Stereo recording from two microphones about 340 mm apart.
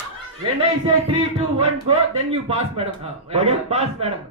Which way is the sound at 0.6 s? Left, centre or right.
Centre.